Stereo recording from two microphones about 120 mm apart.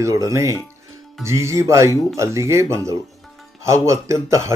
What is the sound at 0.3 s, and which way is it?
Speech, 25° right (ahead or behind).